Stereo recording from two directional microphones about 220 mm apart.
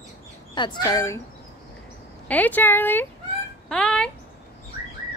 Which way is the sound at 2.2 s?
5° left (ahead or behind).